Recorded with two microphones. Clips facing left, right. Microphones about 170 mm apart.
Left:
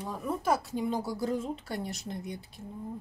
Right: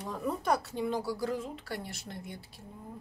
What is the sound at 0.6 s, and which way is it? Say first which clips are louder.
Speech: left 1 dB; 15° left (ahead or behind).